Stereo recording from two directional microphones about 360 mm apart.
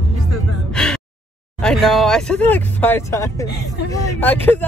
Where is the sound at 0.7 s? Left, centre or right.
Centre.